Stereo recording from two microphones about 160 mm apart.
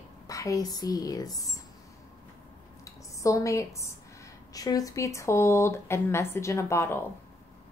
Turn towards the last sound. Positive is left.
turn(degrees=15)  # may be behind; listen again after turning